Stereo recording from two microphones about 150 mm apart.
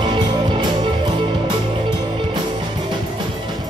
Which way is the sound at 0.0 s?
30° right (ahead or behind).